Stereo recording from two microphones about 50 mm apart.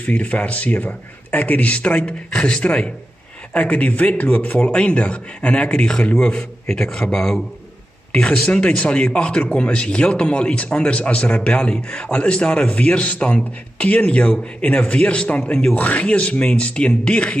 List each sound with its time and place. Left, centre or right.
0.0 s speech: left
3.5 s a man's voice: left